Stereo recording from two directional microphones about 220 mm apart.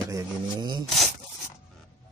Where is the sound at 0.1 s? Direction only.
20° right (ahead or behind).